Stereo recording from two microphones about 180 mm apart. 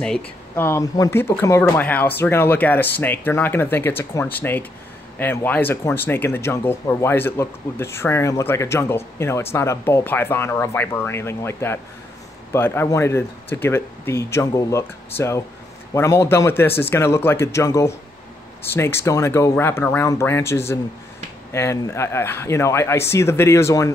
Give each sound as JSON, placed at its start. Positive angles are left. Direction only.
{"t": 0.0, "sound": "speech", "side_deg": 10}